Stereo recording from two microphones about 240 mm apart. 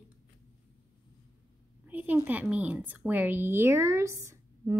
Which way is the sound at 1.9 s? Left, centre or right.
Centre.